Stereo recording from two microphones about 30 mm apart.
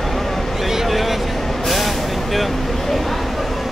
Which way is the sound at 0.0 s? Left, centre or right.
Centre.